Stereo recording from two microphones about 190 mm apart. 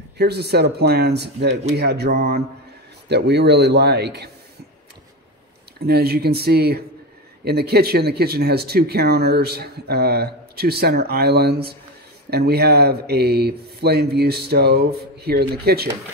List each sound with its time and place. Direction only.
0.2 s speech: 60° right (ahead or behind)
5.8 s speech: 55° right (ahead or behind)